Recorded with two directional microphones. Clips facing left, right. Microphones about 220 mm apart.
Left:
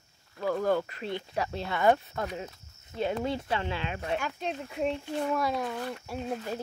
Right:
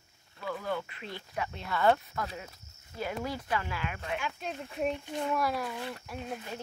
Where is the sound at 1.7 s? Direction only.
15° left (ahead or behind).